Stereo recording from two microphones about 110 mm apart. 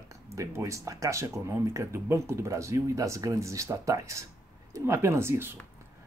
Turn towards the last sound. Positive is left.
turn(degrees=-20)  # may be behind; listen again after turning